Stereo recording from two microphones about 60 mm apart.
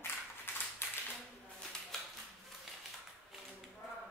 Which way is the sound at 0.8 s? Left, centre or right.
Left.